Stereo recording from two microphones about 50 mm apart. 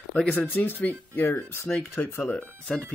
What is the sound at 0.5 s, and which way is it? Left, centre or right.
Speech, left.